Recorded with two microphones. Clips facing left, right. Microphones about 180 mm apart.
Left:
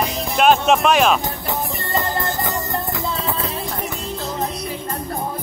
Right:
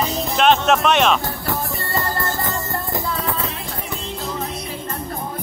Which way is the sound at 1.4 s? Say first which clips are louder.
Right 1 dB; 20° left (ahead or behind).